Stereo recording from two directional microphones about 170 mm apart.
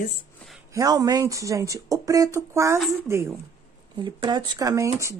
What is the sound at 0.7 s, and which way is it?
A woman's voice, 20° right (ahead or behind).